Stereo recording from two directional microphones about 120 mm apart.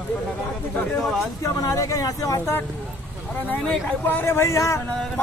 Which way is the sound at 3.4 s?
10° left (ahead or behind).